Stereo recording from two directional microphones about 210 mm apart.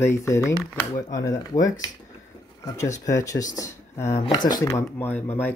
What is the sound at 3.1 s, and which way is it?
Speech, 15° left (ahead or behind).